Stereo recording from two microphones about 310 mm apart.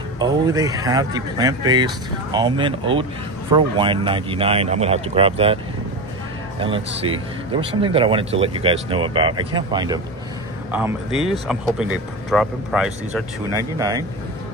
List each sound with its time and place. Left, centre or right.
0.2 s speech: centre
6.6 s speech: centre
11.4 s speech: centre